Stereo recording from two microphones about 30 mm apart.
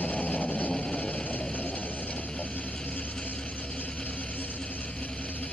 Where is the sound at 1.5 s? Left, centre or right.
Left.